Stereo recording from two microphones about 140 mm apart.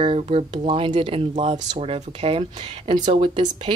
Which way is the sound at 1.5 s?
50° right (ahead or behind).